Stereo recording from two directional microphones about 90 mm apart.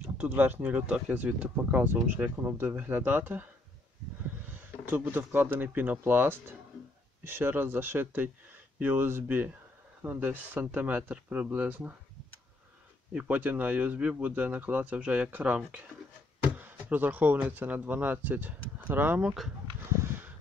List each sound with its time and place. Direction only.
0.2 s speech: 20° right (ahead or behind)
4.6 s speech: 20° right (ahead or behind)
13.1 s speech: 15° right (ahead or behind)
20.0 s a sound: 20° right (ahead or behind)